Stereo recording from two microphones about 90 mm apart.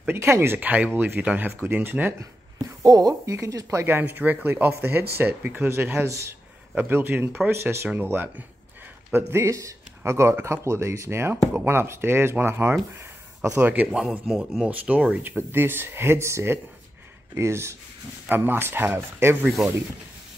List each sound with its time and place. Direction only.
0.0 s speech: 25° right (ahead or behind)
2.6 s speech: 45° right (ahead or behind)
3.3 s speech: 30° right (ahead or behind)
14.7 s speech: 15° right (ahead or behind)
15.3 s speech: 25° right (ahead or behind)